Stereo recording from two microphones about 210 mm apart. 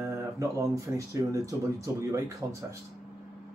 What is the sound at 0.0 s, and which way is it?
Speech, 15° right (ahead or behind).